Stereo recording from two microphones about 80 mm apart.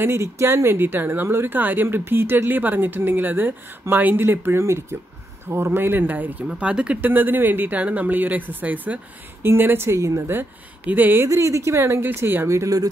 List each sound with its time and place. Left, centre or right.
0.0 s speech: right; by 9.0 s centre
9.4 s speech: right
10.9 s speech: right
11.2 s speech: right